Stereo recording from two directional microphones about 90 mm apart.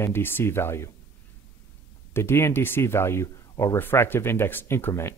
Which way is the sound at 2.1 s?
25° left (ahead or behind).